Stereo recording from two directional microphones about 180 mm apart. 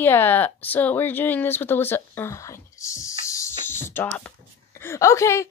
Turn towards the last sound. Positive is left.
turn(degrees=15)  # may be behind; listen again after turning